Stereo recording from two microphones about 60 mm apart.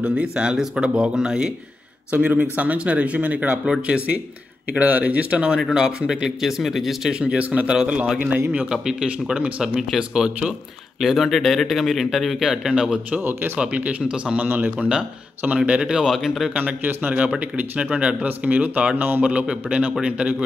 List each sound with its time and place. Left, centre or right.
0.0 s speech: centre
2.0 s a man's voice: right
5.6 s speech: centre
7.1 s a man's voice: centre
11.0 s speech: centre
13.2 s speech: right
13.6 s a man's voice: right
16.5 s a man's voice: right
18.9 s speech: right
19.2 s a man's voice: centre